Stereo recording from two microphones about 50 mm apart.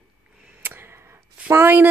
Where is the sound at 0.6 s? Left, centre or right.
Right.